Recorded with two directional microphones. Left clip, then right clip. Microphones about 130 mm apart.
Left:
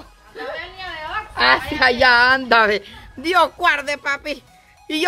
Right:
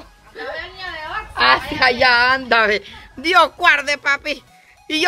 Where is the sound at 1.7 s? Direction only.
45° left (ahead or behind).